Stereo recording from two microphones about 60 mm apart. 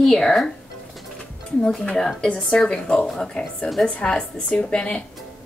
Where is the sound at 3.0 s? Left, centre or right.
Centre.